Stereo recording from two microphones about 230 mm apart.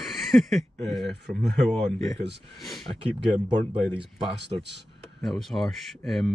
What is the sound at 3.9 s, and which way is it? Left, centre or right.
Speech, right.